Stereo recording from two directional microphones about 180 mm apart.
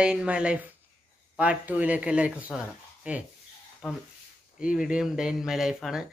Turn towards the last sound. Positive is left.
turn(degrees=-5)  # may be behind; listen again after turning